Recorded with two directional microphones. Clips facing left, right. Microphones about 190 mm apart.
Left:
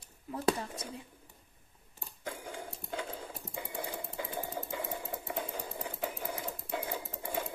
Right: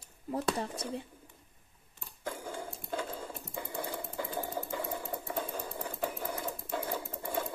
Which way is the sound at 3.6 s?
15° left (ahead or behind).